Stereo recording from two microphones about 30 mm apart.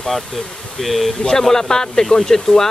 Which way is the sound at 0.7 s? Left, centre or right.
Centre.